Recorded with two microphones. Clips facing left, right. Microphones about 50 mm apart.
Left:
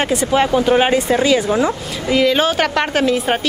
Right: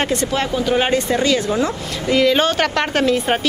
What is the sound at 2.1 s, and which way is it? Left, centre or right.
A woman's voice, centre.